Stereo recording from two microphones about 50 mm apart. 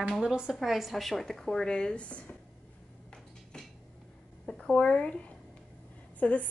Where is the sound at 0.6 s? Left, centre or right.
Centre; by 2.3 s left.